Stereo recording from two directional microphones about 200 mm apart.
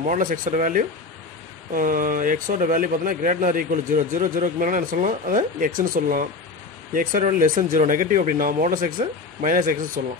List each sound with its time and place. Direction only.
0.0 s speech: 40° right (ahead or behind)